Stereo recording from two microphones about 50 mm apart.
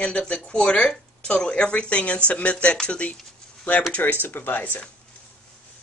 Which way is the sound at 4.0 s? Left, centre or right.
Left.